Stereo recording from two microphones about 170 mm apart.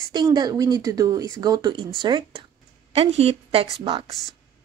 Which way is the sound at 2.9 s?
35° right (ahead or behind).